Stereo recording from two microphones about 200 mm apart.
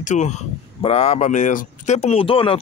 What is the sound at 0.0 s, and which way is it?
Speech, 35° left (ahead or behind).